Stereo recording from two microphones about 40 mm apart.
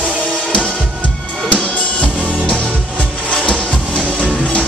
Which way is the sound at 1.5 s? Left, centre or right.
Left.